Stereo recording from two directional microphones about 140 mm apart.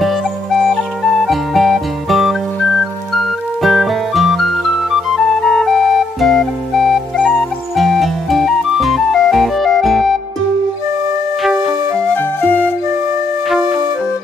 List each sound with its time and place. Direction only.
0.0 s music: centre (ahead or behind)
11.4 s music: 5° right (ahead or behind)
12.1 s music: 15° left (ahead or behind)
13.5 s music: 5° right (ahead or behind)